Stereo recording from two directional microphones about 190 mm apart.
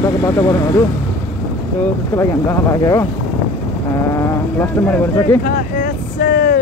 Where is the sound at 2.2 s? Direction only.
15° left (ahead or behind).